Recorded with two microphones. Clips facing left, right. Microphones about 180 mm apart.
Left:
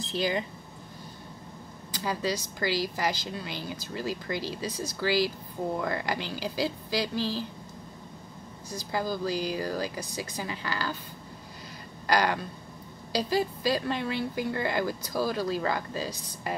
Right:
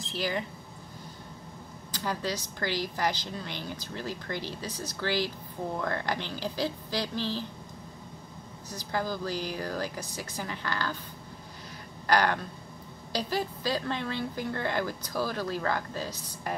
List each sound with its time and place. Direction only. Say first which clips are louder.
0.1 s speech: left 3 dB; 20° left (ahead or behind)
1.9 s speech: left 2 dB; 10° left (ahead or behind)
8.6 s speech: left 1 dB; 10° left (ahead or behind)
12.1 s speech: even; 10° left (ahead or behind)